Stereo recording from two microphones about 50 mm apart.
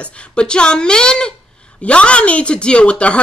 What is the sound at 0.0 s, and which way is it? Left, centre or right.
A woman's voice, left.